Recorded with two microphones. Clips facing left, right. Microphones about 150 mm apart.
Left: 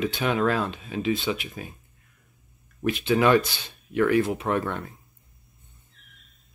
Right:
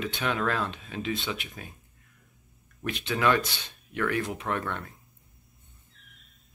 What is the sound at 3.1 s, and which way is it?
Speech, 20° left (ahead or behind).